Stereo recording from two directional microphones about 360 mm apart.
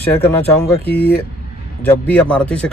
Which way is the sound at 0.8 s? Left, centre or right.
Left.